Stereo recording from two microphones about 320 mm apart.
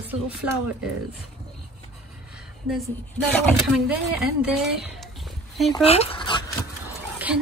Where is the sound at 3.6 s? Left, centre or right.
Centre.